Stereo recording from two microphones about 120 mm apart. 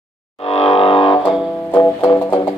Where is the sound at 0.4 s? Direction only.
55° left (ahead or behind).